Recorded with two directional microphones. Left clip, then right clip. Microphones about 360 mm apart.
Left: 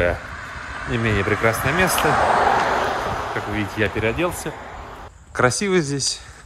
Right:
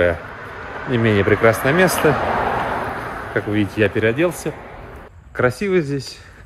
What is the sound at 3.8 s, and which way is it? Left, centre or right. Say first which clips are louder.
Speech: right 4 dB; centre.